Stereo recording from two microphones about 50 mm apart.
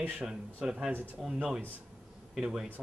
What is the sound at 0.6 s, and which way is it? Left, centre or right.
Speech, centre.